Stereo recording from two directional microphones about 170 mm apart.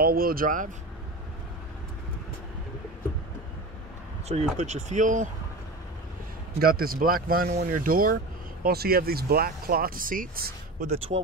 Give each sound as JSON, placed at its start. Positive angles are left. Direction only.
{"t": 0.0, "sound": "speech", "side_deg": -60}
{"t": 4.3, "sound": "speech", "side_deg": -40}
{"t": 6.6, "sound": "speech", "side_deg": -60}